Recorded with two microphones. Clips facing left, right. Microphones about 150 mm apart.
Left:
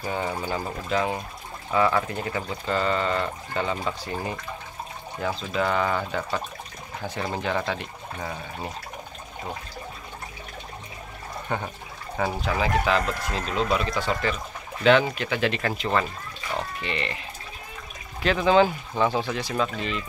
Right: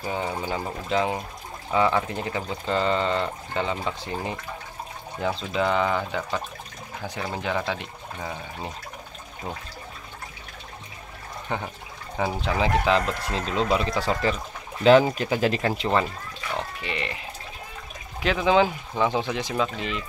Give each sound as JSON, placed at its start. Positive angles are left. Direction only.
{"t": 0.0, "sound": "speech", "side_deg": -10}
{"t": 5.5, "sound": "speech", "side_deg": -15}
{"t": 7.2, "sound": "speech", "side_deg": 15}
{"t": 7.4, "sound": "speech", "side_deg": -10}
{"t": 12.4, "sound": "speech", "side_deg": -25}
{"t": 16.8, "sound": "speech", "side_deg": -10}
{"t": 18.2, "sound": "speech", "side_deg": -10}